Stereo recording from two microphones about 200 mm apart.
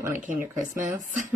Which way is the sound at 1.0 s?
40° right (ahead or behind).